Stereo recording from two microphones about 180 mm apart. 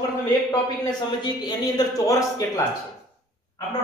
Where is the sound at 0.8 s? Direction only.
20° left (ahead or behind).